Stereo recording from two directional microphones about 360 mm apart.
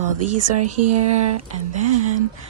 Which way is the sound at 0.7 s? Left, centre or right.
Right.